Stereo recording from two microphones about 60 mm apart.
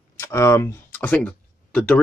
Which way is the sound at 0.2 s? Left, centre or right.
Left.